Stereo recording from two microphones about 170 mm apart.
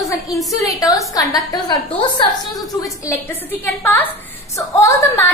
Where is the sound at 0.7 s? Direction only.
20° left (ahead or behind).